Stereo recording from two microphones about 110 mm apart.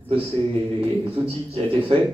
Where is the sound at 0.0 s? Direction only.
60° right (ahead or behind).